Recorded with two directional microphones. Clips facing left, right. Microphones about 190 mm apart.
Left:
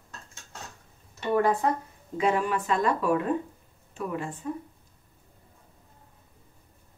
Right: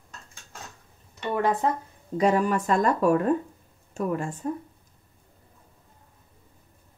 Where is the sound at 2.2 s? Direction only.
40° right (ahead or behind).